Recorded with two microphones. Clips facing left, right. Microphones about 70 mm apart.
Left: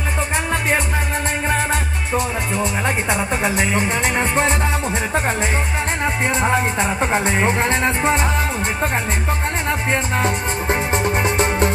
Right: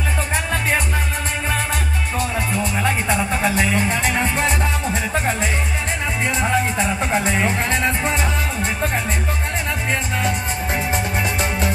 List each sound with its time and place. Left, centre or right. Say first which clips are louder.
1.5 s music: left 3 dB; left
6.4 s music: left 1 dB; left
9.7 s music: left 4 dB; left